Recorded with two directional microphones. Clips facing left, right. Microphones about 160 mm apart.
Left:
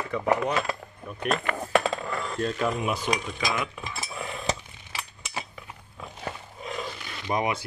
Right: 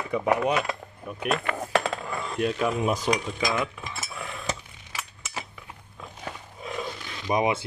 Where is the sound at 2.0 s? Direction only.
10° right (ahead or behind).